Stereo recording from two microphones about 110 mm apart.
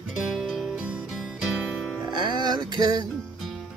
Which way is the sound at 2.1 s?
40° right (ahead or behind).